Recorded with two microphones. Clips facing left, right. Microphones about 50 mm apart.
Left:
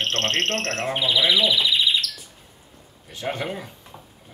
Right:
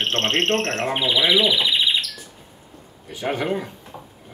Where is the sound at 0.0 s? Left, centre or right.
Right.